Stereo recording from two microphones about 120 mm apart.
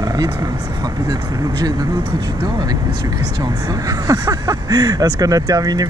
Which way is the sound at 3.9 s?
30° right (ahead or behind).